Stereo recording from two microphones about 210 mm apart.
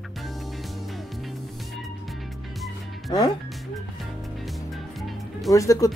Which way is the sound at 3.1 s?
20° left (ahead or behind).